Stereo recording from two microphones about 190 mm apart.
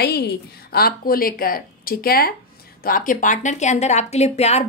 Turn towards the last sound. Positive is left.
turn(degrees=35)  # may be behind; listen again after turning